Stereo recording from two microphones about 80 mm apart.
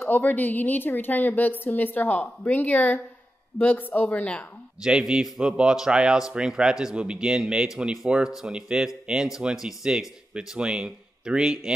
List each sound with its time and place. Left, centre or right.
0.0 s a woman's voice: left
4.8 s speech: centre